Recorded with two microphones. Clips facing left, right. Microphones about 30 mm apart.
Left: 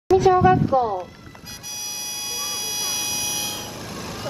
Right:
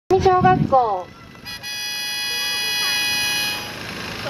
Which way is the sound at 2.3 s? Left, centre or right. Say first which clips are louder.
Right 6 dB; right.